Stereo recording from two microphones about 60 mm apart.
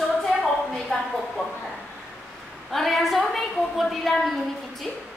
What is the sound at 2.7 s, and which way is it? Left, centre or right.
A woman's voice, centre.